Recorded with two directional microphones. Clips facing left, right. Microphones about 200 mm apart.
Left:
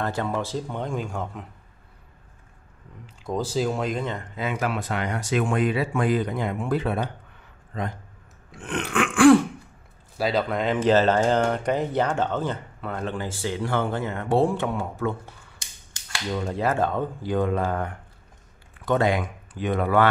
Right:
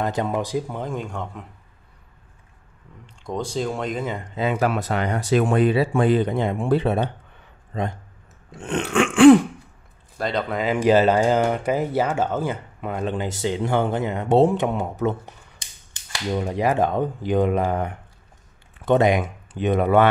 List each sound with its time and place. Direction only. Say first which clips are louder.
0.0 s speech: right 3 dB; 15° right (ahead or behind); by 1.4 s centre (ahead or behind)
3.3 s speech: left 1 dB; 5° left (ahead or behind)
4.4 s speech: right 6 dB; 35° right (ahead or behind)
8.5 s speech: right 4 dB; 25° right (ahead or behind)
10.1 s speech: left 1 dB; 5° left (ahead or behind); by 20.1 s 20° right (ahead or behind)